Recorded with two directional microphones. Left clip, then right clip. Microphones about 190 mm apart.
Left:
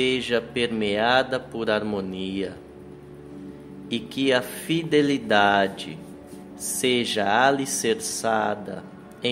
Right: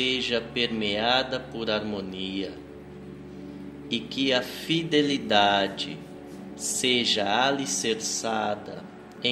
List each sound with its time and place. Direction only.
0.0 s speech: 20° left (ahead or behind)
3.9 s speech: 15° left (ahead or behind)